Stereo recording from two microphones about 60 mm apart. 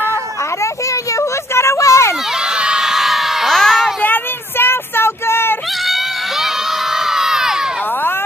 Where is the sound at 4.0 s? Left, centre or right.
Left.